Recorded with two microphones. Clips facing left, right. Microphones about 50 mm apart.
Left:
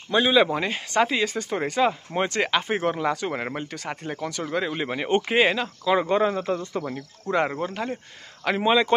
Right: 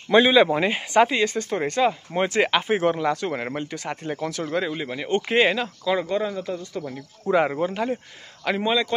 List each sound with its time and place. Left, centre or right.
0.1 s speech: centre
1.1 s speech: centre
2.2 s speech: centre
3.0 s speech: centre
4.7 s speech: left
5.3 s speech: centre
5.9 s speech: left
7.0 s speech: centre
8.5 s speech: centre